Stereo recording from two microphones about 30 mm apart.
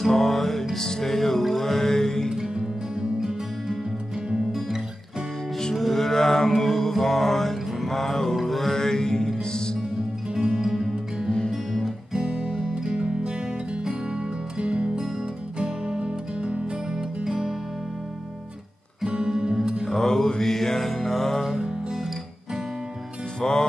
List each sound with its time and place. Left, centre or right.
0.0 s music: centre
2.4 s music: right
5.8 s mantra: centre
8.7 s music: centre
9.9 s music: centre
10.6 s music: centre
12.2 s music: right
17.2 s music: centre
19.1 s music: right
19.9 s mantra: centre
23.4 s music: left